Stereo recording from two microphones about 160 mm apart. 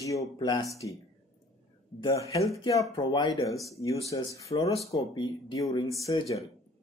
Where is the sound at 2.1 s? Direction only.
20° left (ahead or behind).